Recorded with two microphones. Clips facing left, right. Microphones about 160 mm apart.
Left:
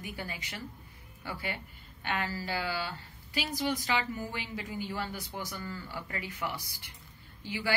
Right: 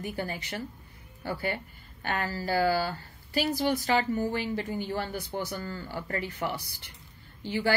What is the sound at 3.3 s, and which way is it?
Speech, 35° right (ahead or behind).